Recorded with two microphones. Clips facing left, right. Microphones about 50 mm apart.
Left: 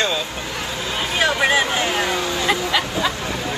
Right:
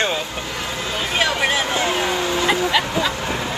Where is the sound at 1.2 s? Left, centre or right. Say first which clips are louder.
Left 5 dB; left.